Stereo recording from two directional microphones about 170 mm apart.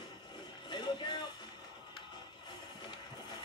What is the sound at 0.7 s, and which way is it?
Music, 25° left (ahead or behind).